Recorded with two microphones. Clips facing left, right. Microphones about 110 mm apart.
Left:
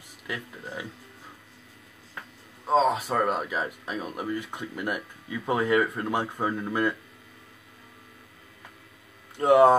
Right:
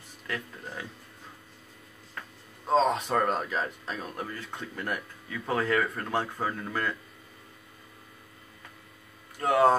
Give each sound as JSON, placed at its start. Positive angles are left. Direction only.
{"t": 0.3, "sound": "speech", "side_deg": 10}
{"t": 2.6, "sound": "speech", "side_deg": 0}
{"t": 9.4, "sound": "speech", "side_deg": 20}